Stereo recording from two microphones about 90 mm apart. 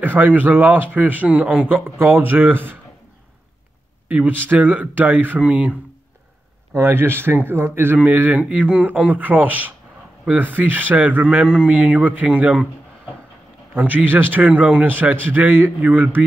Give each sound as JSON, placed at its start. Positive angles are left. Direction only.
{"t": 0.0, "sound": "a man's voice", "side_deg": -20}
{"t": 1.9, "sound": "speech", "side_deg": -25}
{"t": 4.1, "sound": "a man's voice", "side_deg": -20}
{"t": 6.7, "sound": "a man's voice", "side_deg": -25}
{"t": 13.7, "sound": "speech", "side_deg": -20}